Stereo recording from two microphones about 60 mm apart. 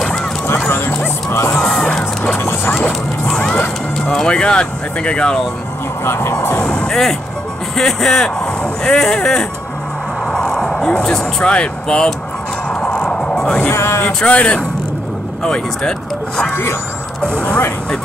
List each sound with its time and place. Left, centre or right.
0.7 s music: left
1.6 s crowd: centre
2.3 s music: left
3.3 s music: centre
4.0 s speech: centre
6.0 s speech: left
6.5 s speech: centre
6.9 s speech: centre
12.6 s music: centre
13.6 s speech: left
14.0 s speech: left